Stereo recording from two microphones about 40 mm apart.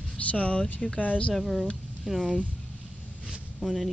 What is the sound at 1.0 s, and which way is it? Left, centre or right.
Speech, left.